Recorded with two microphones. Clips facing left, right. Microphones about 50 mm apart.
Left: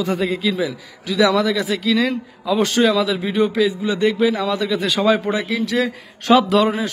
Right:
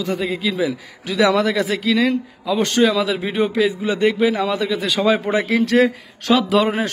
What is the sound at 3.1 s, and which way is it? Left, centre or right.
Speech, right.